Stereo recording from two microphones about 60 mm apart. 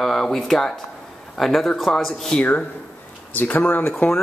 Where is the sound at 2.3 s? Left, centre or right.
Left.